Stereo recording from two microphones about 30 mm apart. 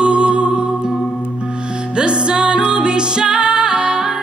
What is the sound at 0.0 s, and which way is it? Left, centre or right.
Music, right.